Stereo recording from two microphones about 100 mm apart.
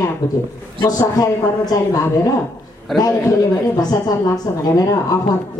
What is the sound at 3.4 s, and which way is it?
A woman's voice, 40° left (ahead or behind).